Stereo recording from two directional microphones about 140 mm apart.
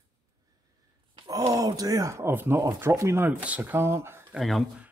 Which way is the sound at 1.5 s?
25° right (ahead or behind).